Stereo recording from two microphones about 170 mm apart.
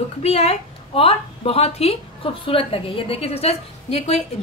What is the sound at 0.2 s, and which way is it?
A woman's voice, 35° left (ahead or behind).